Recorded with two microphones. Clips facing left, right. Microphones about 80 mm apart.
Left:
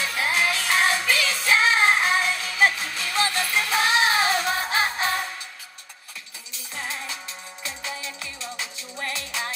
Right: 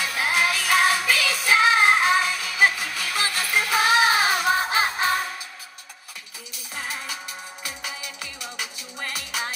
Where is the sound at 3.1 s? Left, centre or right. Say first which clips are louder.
Left 1 dB; centre.